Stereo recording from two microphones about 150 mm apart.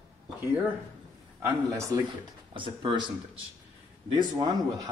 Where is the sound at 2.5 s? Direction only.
35° right (ahead or behind).